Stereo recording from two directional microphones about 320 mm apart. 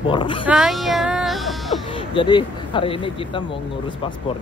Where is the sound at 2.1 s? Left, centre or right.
Centre.